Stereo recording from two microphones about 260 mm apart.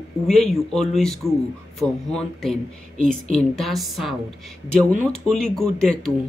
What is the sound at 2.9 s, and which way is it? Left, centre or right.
Speech, right.